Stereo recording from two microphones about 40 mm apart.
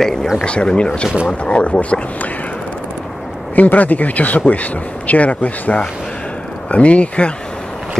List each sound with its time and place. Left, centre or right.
0.0 s a sound: centre
0.4 s speech: left
3.5 s speech: left